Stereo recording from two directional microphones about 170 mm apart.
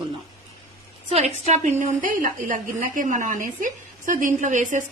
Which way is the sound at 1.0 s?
40° right (ahead or behind).